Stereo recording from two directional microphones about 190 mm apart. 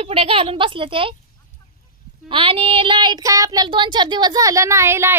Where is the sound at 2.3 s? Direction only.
25° right (ahead or behind).